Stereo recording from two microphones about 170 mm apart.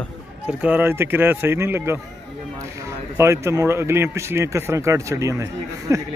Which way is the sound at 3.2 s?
15° right (ahead or behind).